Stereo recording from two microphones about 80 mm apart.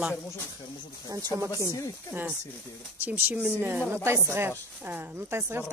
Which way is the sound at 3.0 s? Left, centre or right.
Right.